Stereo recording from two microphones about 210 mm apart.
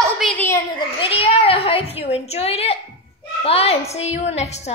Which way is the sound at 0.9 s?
25° left (ahead or behind).